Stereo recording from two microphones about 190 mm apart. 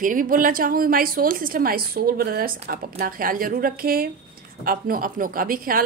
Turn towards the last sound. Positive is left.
turn(degrees=-50)  # may be behind; listen again after turning